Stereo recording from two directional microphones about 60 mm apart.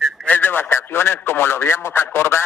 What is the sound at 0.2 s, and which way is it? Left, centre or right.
A man's voice, left.